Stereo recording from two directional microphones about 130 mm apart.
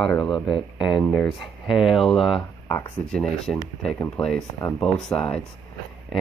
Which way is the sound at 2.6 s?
25° left (ahead or behind).